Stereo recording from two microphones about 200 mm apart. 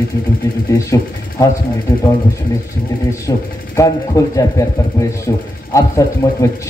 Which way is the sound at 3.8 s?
15° left (ahead or behind).